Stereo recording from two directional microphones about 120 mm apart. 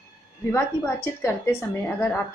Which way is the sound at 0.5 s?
20° left (ahead or behind).